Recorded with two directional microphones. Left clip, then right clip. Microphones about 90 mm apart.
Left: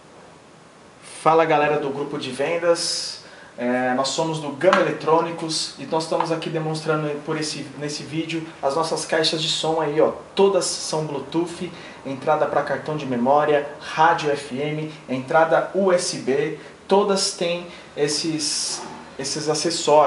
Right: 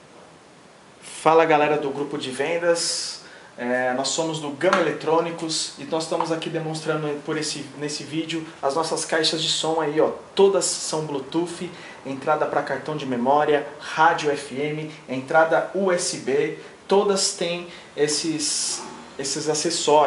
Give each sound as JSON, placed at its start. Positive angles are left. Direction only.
{"t": 1.2, "sound": "speech", "side_deg": -30}
{"t": 4.0, "sound": "speech", "side_deg": -20}